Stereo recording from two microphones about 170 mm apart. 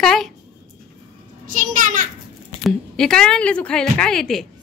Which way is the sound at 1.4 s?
50° right (ahead or behind).